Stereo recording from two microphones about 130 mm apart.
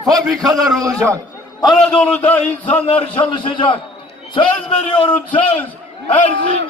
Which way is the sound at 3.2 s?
35° left (ahead or behind).